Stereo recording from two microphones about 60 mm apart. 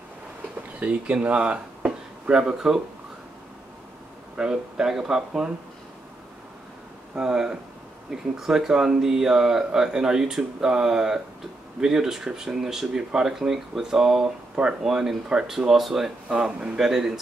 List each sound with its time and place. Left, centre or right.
0.7 s speech: centre
4.4 s speech: centre
7.2 s speech: centre